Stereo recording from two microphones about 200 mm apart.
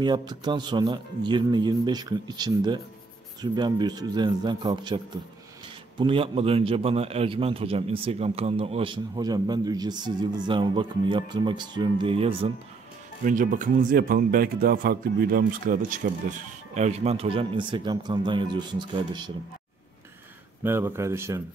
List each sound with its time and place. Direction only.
0.0 s a man's voice: 20° right (ahead or behind)
13.2 s speech: 40° right (ahead or behind); by 19.3 s 20° right (ahead or behind)
20.6 s speech: 10° right (ahead or behind)